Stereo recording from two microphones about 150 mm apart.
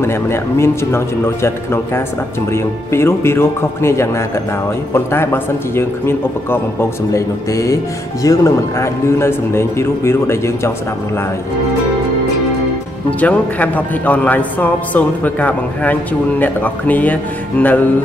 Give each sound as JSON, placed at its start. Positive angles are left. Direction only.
{"t": 0.0, "sound": "a man's voice", "side_deg": 15}
{"t": 13.2, "sound": "a man's voice", "side_deg": 10}